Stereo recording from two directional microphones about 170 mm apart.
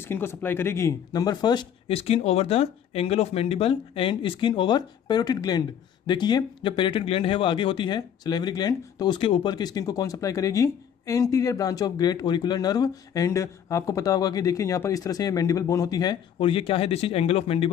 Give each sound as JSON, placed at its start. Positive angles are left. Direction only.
{"t": 0.0, "sound": "speech", "side_deg": 15}